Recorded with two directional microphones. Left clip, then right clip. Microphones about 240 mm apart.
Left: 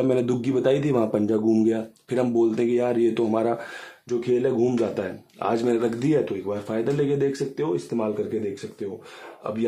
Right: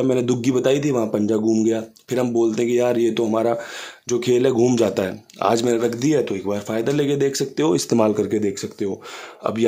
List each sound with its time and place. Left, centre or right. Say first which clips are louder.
0.0 s speech: right 3 dB; centre
4.1 s speech: right 5 dB; right
9.4 s speech: right 7 dB; right